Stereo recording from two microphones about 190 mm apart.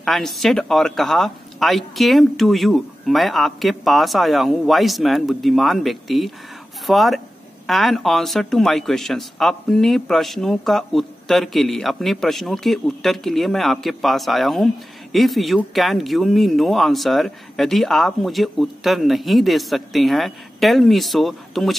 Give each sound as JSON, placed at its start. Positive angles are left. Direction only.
{"t": 0.0, "sound": "speech", "side_deg": 0}